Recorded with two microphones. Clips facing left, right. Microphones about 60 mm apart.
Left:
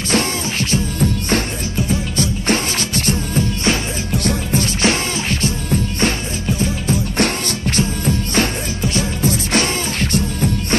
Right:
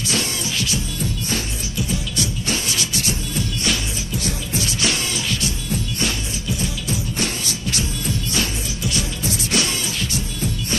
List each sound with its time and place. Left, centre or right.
0.1 s music: left
4.1 s music: left